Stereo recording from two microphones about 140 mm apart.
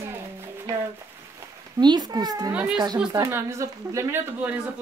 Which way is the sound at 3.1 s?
15° right (ahead or behind).